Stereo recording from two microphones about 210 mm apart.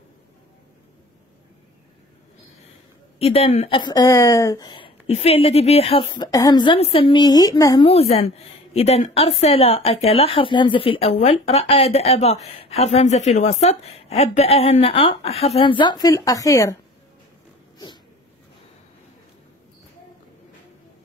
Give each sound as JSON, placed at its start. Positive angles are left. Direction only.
{"t": 3.2, "sound": "a woman's voice", "side_deg": 30}
{"t": 7.9, "sound": "a woman's voice", "side_deg": 30}